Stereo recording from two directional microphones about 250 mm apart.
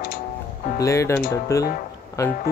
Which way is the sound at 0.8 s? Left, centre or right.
Centre.